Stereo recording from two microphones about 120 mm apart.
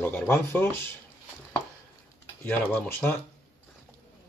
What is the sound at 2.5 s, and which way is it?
Speech, 15° left (ahead or behind).